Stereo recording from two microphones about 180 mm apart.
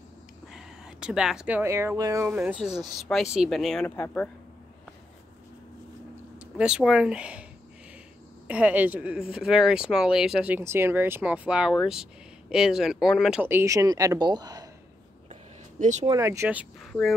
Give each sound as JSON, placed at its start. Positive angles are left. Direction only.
{"t": 0.5, "sound": "speech", "side_deg": -5}
{"t": 2.4, "sound": "speech", "side_deg": -5}
{"t": 6.4, "sound": "speech", "side_deg": -5}
{"t": 8.5, "sound": "speech", "side_deg": -5}
{"t": 15.8, "sound": "speech", "side_deg": -40}
{"t": 16.1, "sound": "speech", "side_deg": -15}